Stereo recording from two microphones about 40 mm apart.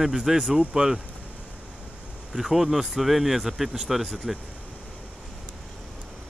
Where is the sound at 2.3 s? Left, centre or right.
Centre.